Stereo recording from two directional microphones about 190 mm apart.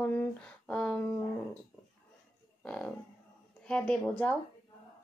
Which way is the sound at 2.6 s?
5° left (ahead or behind).